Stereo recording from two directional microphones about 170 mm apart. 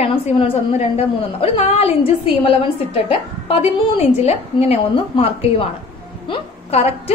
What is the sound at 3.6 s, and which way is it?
A woman's voice, 35° left (ahead or behind).